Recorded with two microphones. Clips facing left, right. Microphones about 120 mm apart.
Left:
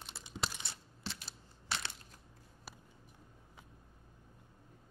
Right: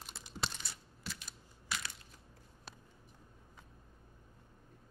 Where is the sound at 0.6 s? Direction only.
25° left (ahead or behind).